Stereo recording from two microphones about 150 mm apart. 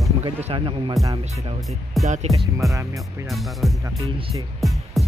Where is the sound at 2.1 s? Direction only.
45° right (ahead or behind).